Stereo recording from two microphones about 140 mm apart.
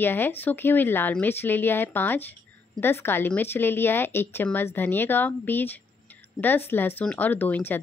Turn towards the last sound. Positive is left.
turn(degrees=15)  # may be behind; listen again after turning